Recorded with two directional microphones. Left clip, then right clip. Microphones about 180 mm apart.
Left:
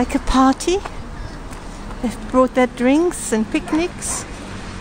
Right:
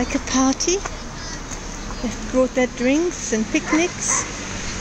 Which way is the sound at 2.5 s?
20° left (ahead or behind).